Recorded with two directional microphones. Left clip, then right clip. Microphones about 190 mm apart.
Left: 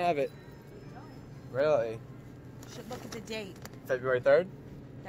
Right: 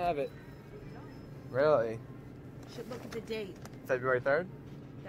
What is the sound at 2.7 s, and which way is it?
Speech, 35° left (ahead or behind).